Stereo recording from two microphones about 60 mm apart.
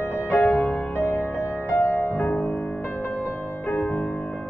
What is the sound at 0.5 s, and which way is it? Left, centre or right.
Music, centre.